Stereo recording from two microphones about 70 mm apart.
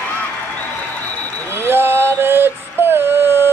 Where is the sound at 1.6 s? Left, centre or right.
Right.